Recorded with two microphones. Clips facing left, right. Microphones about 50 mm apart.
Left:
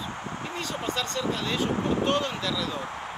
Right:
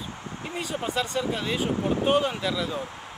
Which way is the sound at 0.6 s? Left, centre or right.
Centre.